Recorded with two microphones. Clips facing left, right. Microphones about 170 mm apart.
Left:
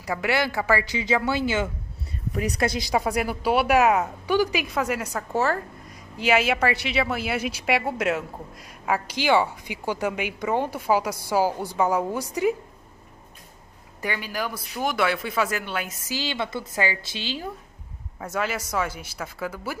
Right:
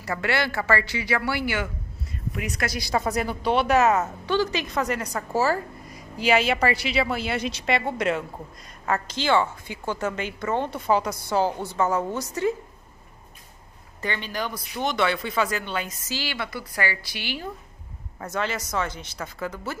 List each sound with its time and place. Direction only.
0.0 s a woman's voice: 15° left (ahead or behind)
2.3 s a woman's voice: 30° left (ahead or behind)
2.9 s a woman's voice: 10° left (ahead or behind)
14.0 s speech: 5° left (ahead or behind)
16.2 s a woman's voice: 20° left (ahead or behind)
18.2 s a woman's voice: 5° left (ahead or behind)